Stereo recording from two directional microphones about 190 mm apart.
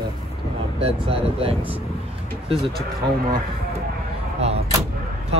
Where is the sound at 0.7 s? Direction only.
30° right (ahead or behind).